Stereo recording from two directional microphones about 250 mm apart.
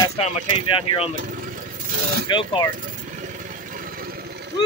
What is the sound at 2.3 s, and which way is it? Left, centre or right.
Speech, centre.